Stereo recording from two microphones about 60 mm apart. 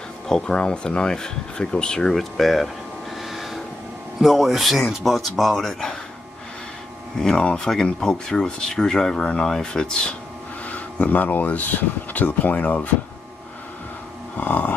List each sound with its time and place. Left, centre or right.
0.3 s speech: centre
2.1 s air conditioning: centre
4.2 s speech: centre
7.3 s speech: centre
10.6 s speech: left
14.3 s dog: left